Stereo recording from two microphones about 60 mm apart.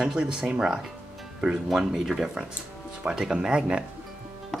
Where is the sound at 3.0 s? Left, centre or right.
Centre.